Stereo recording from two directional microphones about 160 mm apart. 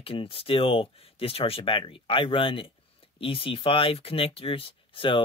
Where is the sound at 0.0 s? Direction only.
35° left (ahead or behind).